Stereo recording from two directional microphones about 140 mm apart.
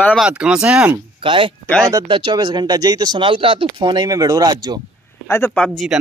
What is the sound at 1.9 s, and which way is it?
Speech, 25° right (ahead or behind).